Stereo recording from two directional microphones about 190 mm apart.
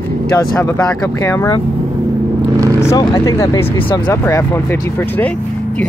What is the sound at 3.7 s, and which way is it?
Speech, 25° left (ahead or behind).